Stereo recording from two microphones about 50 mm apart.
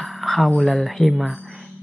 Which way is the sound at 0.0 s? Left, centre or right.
Centre.